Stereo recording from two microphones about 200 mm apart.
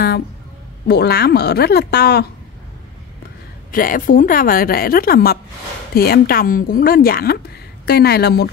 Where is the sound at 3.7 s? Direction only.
45° left (ahead or behind).